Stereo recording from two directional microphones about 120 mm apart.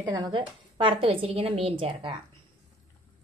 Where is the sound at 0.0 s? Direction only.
35° right (ahead or behind).